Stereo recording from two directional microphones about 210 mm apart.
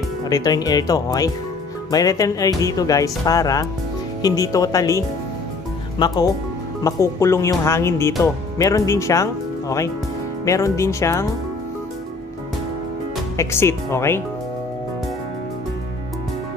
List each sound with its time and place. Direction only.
0.2 s speech: 20° left (ahead or behind)
13.4 s speech: 10° left (ahead or behind)